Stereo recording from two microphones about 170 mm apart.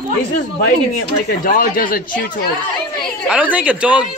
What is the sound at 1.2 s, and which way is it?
Speech, 55° left (ahead or behind).